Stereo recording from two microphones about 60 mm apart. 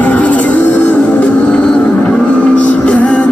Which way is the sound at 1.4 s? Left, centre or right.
Centre.